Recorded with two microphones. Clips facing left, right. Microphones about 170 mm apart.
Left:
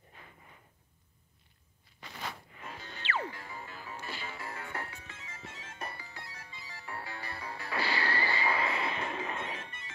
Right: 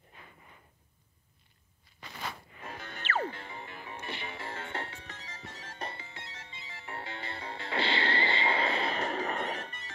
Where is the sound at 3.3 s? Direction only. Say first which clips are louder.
Right 2 dB; 25° right (ahead or behind).